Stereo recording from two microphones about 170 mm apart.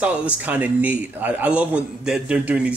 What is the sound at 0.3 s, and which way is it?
A man's voice, 10° right (ahead or behind).